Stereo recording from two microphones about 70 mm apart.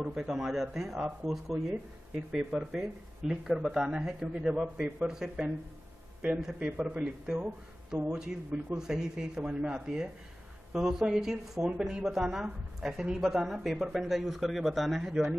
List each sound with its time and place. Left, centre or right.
0.0 s speech: centre
2.1 s speech: centre